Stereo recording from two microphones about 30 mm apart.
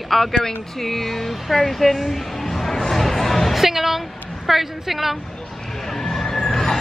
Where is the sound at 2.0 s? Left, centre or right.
Centre.